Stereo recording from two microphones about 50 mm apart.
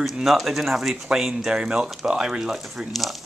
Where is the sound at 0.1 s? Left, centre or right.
Centre.